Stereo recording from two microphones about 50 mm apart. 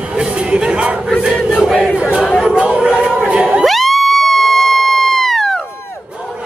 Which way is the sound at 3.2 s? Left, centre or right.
Right.